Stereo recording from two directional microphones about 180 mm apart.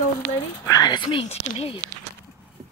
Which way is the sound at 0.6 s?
20° left (ahead or behind).